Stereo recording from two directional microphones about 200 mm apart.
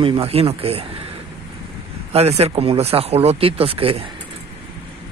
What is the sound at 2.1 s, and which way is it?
Speech, 30° right (ahead or behind).